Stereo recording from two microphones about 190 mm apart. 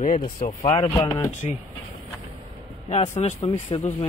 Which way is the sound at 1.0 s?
20° left (ahead or behind).